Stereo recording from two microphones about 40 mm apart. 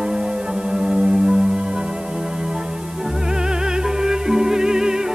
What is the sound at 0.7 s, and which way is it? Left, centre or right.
Music, centre.